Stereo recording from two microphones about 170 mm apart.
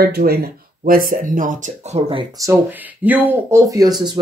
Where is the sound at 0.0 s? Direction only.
65° right (ahead or behind); by 2.2 s 35° right (ahead or behind).